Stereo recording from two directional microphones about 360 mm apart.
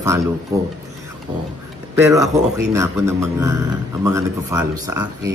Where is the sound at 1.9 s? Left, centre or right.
Centre.